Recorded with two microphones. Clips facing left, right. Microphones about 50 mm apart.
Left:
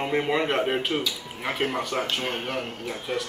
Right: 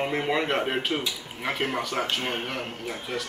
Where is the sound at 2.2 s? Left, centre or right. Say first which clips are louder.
Left 1 dB; centre.